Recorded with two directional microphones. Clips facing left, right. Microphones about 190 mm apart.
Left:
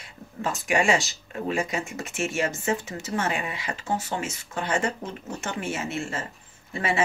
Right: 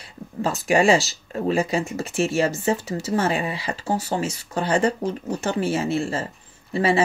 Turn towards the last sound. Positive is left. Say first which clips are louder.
# right 6 dB
turn(degrees=-35)  # may be behind; listen again after turning